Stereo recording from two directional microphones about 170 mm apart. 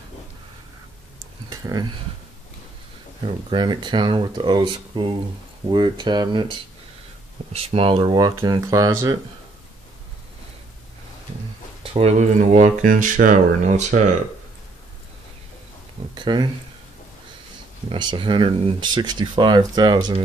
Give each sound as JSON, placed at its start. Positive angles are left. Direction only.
{"t": 1.5, "sound": "a sound", "side_deg": -25}
{"t": 3.2, "sound": "speech", "side_deg": -30}
{"t": 7.5, "sound": "speech", "side_deg": -35}
{"t": 11.8, "sound": "speech", "side_deg": -35}
{"t": 16.2, "sound": "speech", "side_deg": -25}
{"t": 17.9, "sound": "speech", "side_deg": -30}